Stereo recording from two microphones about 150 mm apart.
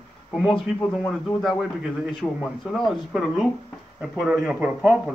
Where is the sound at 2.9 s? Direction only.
Centre (ahead or behind).